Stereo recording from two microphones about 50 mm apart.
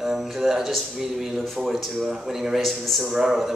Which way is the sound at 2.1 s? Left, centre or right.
Centre.